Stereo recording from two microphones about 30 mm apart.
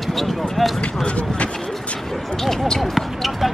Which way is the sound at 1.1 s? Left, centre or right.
Left.